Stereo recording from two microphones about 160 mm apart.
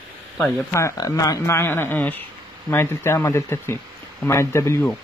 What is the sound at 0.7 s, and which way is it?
Speech, 20° left (ahead or behind).